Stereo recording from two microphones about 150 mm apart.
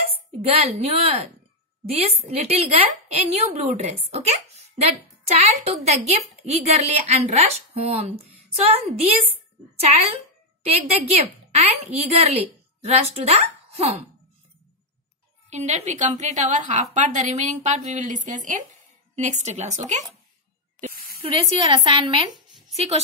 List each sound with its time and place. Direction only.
0.4 s a woman's voice: 40° right (ahead or behind)
10.6 s a woman's voice: 45° right (ahead or behind)
15.5 s a woman's voice: 50° right (ahead or behind)
20.9 s spray: 80° right
21.3 s a woman's voice: 35° right (ahead or behind)